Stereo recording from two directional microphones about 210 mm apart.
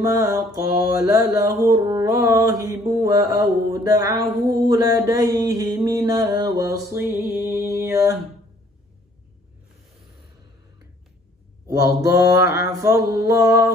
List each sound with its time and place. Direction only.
0.0 s mantra: 15° right (ahead or behind)
12.0 s mantra: 15° right (ahead or behind)